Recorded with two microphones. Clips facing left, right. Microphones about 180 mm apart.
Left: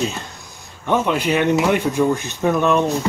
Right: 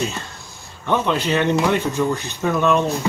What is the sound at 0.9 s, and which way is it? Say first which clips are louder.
Speech: left 1 dB; 10° left (ahead or behind).